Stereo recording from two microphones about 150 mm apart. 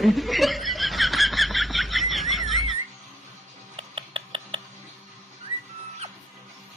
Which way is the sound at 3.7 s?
35° right (ahead or behind).